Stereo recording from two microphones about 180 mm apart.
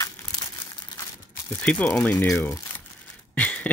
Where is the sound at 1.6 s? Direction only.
10° left (ahead or behind).